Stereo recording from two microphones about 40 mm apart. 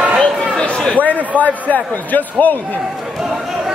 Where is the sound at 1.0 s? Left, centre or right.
Left.